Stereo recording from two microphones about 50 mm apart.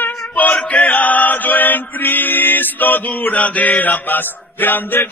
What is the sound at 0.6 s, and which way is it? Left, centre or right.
Chant, left.